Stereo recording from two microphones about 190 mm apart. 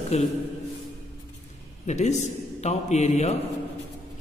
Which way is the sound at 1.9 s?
35° left (ahead or behind).